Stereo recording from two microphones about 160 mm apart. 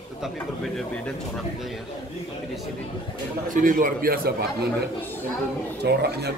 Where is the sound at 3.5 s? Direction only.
60° right (ahead or behind).